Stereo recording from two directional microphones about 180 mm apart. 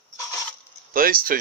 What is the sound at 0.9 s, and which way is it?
Speech, 50° right (ahead or behind).